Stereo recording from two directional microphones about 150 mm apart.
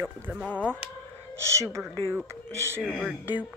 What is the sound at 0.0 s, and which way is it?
Speech, 10° right (ahead or behind).